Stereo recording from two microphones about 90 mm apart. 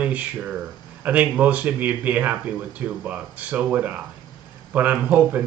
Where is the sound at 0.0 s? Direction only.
15° right (ahead or behind).